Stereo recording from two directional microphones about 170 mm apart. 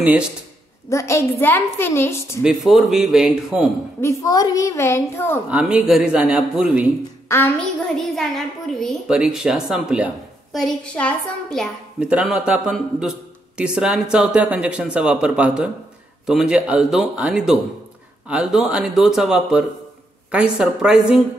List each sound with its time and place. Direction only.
0.8 s a child's voice: 15° left (ahead or behind)
2.4 s a woman's voice: centre (ahead or behind)
4.0 s a child's voice: 15° left (ahead or behind)
5.5 s a woman's voice: 5° right (ahead or behind)
7.2 s a child's voice: 15° left (ahead or behind)
8.1 s a woman's voice: centre (ahead or behind)